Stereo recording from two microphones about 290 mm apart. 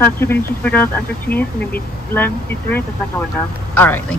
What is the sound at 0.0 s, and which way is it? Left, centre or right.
Speech, centre.